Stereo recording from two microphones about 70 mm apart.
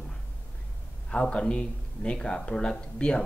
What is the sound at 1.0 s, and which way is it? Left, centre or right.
Speech, centre.